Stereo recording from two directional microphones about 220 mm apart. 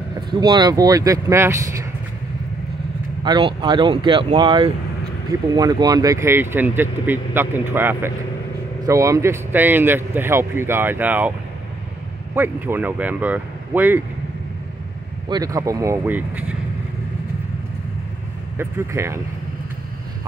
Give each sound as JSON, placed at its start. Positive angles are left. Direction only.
{"t": 0.3, "sound": "speech", "side_deg": -20}
{"t": 3.3, "sound": "speech", "side_deg": -20}
{"t": 12.4, "sound": "speech", "side_deg": -10}
{"t": 15.2, "sound": "speech", "side_deg": -15}
{"t": 18.6, "sound": "speech", "side_deg": -10}